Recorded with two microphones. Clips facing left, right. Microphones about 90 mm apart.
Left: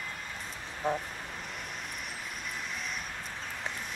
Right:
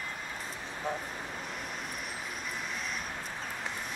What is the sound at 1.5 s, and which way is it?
Vehicle, centre (ahead or behind).